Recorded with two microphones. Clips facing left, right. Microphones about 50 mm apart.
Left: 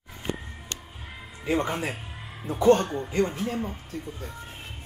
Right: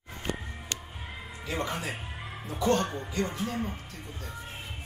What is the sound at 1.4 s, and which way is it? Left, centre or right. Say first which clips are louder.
Speech: left 6 dB; left.